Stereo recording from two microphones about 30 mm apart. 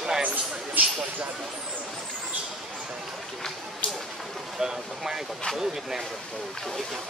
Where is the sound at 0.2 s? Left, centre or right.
Right.